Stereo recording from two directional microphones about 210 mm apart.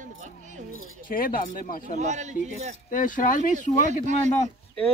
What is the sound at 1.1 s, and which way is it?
Speech, 45° left (ahead or behind).